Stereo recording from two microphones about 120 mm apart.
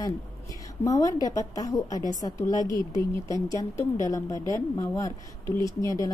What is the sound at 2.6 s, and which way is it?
Speech, 35° right (ahead or behind).